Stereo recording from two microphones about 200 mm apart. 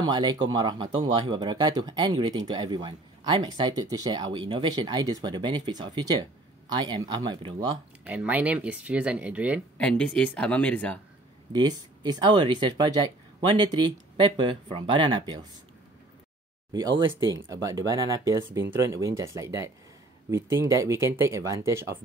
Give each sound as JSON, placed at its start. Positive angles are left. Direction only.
{"t": 0.0, "sound": "speech", "side_deg": -20}
{"t": 8.0, "sound": "speech", "side_deg": -5}
{"t": 9.8, "sound": "speech", "side_deg": 5}
{"t": 11.5, "sound": "speech", "side_deg": -20}
{"t": 17.4, "sound": "speech", "side_deg": -15}